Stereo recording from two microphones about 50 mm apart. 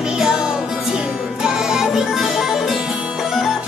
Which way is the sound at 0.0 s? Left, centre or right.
Centre.